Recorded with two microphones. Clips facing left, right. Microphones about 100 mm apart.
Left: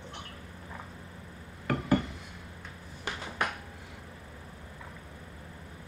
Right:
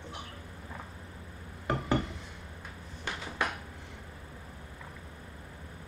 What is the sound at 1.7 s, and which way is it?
Glass, 20° right (ahead or behind).